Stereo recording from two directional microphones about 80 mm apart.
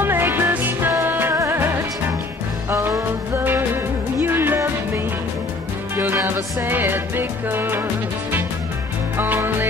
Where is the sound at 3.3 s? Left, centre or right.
Right.